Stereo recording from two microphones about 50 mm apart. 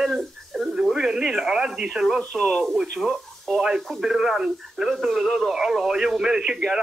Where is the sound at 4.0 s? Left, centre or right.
Centre.